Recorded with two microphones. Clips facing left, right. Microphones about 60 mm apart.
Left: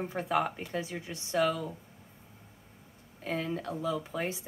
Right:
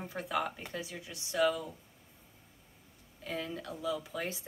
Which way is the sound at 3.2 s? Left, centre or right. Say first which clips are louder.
Left 5 dB; left.